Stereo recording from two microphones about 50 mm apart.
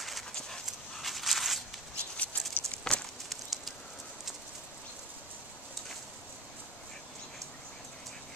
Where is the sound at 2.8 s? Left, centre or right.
Centre.